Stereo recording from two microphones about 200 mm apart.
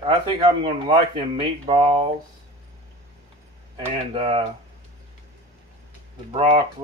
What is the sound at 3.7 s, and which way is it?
Speech, 25° right (ahead or behind).